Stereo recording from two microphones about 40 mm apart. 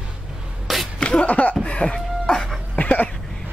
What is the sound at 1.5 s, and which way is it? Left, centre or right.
Music, left.